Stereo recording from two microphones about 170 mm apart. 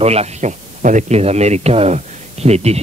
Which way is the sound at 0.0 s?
40° right (ahead or behind).